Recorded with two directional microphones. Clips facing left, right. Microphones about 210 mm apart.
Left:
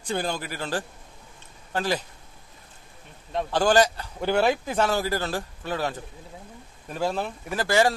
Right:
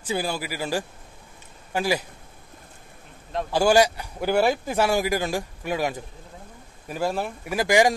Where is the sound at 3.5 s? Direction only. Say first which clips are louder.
Right 2 dB; 10° right (ahead or behind).